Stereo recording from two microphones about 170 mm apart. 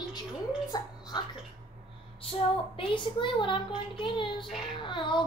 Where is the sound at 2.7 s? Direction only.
30° left (ahead or behind).